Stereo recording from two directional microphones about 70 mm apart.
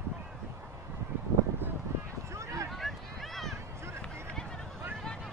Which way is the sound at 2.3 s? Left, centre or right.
Right.